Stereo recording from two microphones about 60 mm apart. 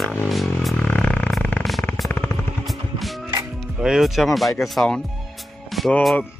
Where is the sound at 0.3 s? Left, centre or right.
Centre.